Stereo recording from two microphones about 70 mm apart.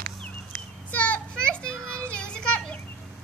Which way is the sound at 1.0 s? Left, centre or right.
Centre.